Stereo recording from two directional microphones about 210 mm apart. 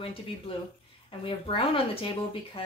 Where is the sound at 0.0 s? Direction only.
25° left (ahead or behind).